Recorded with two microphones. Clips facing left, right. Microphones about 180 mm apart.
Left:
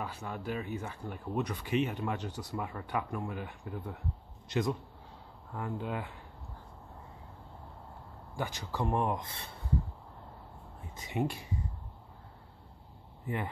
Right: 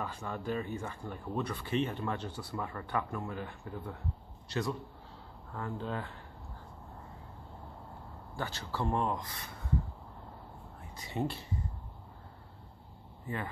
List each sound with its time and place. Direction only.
0.0 s speech: 5° left (ahead or behind)
8.4 s speech: 15° left (ahead or behind)
11.0 s speech: 15° left (ahead or behind)